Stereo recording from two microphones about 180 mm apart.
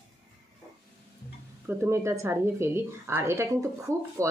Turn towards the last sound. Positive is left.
turn(degrees=-15)  # may be behind; listen again after turning